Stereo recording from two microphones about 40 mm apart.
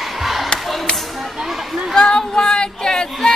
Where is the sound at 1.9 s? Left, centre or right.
Centre.